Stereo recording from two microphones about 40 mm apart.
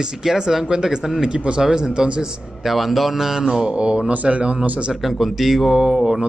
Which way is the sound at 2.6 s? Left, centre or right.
Centre.